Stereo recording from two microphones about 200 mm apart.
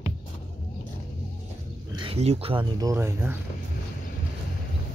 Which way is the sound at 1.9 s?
25° right (ahead or behind).